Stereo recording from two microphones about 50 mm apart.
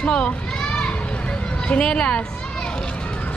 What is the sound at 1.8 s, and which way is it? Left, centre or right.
Speech, centre.